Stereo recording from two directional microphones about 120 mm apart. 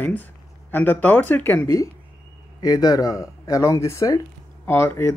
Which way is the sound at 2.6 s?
30° left (ahead or behind).